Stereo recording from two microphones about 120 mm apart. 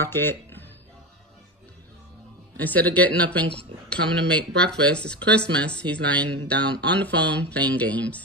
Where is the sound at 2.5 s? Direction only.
15° left (ahead or behind).